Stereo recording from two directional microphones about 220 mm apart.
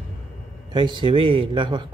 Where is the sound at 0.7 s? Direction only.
20° right (ahead or behind).